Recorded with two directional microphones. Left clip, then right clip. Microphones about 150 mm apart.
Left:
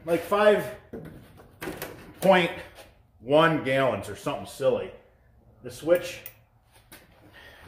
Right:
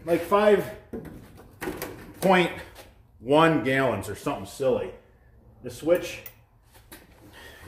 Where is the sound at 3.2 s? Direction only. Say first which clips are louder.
Right 1 dB; 45° right (ahead or behind).